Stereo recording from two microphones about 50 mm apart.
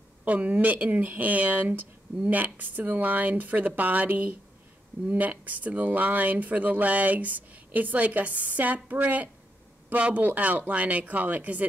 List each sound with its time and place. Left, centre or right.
0.2 s speech: right